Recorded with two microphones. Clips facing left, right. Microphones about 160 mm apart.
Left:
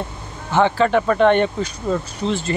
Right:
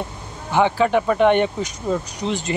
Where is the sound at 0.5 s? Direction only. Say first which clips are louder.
Left 1 dB; 10° right (ahead or behind).